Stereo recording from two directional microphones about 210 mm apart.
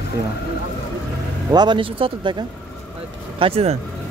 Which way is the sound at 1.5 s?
20° right (ahead or behind).